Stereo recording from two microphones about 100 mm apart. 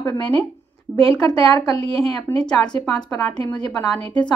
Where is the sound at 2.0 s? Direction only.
10° left (ahead or behind).